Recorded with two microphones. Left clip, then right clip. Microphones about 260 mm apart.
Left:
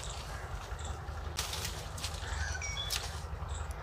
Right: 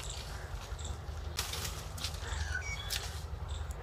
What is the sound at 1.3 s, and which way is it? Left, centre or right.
Bird, centre.